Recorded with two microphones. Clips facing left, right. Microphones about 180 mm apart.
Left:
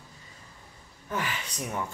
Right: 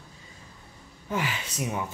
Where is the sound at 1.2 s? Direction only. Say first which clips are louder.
Right 2 dB; 15° right (ahead or behind).